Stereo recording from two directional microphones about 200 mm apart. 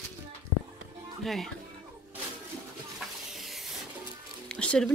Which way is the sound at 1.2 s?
Centre (ahead or behind).